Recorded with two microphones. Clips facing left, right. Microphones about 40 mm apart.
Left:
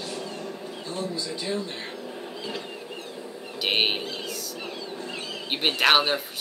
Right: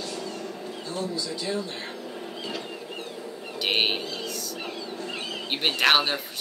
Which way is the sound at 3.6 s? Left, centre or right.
Centre.